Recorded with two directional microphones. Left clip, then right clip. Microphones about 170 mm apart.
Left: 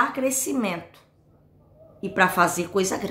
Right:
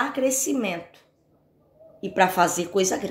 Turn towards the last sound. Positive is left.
turn(degrees=10)  # may be behind; listen again after turning